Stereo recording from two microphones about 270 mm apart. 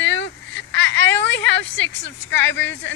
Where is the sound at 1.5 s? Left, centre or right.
Left.